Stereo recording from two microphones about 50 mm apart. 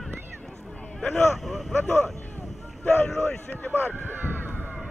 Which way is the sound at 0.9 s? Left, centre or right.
Centre.